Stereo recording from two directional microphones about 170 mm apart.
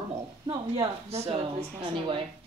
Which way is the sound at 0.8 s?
35° right (ahead or behind).